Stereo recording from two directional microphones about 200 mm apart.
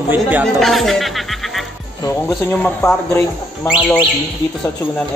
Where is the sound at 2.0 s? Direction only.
20° left (ahead or behind).